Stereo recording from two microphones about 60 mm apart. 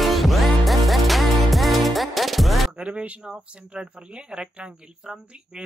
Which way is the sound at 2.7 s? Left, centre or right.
Centre.